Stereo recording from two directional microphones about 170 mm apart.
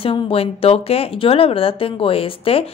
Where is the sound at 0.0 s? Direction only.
35° left (ahead or behind).